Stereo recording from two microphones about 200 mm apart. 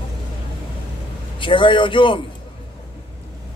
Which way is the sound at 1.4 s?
25° left (ahead or behind).